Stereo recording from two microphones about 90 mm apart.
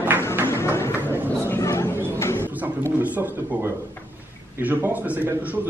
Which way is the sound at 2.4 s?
20° right (ahead or behind).